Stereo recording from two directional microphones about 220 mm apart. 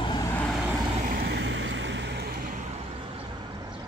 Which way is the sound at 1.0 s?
45° right (ahead or behind).